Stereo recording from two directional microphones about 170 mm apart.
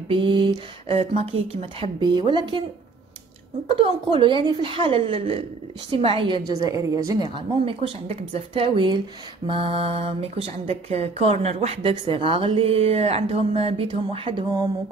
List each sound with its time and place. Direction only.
0.1 s speech: 30° right (ahead or behind)
3.7 s speech: 30° right (ahead or behind)